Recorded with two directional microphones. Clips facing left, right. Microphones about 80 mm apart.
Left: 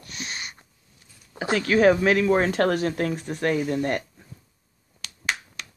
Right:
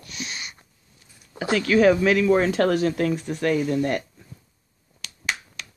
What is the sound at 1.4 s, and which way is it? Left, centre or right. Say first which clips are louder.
Speech: right 1 dB; left.